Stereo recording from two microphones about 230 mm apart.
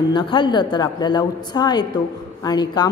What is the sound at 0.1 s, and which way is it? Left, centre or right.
A woman's voice, centre.